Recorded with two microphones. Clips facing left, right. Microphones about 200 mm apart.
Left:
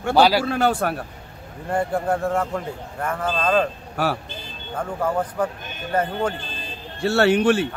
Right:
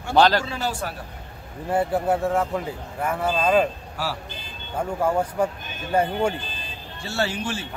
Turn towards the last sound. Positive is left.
turn(degrees=65)  # may be behind; listen again after turning